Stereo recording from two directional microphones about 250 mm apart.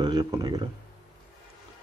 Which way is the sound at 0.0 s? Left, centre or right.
Centre.